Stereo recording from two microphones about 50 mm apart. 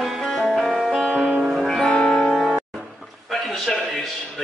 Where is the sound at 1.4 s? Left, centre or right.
Centre.